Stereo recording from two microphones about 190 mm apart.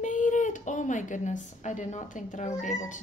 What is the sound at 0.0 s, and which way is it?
A woman's voice, 40° left (ahead or behind).